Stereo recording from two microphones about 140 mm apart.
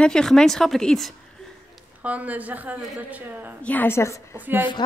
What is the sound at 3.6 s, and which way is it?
Speech, 10° left (ahead or behind).